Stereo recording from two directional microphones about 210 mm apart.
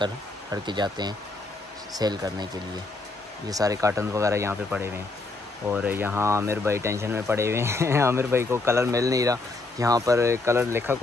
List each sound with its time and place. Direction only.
0.0 s speech: 20° right (ahead or behind)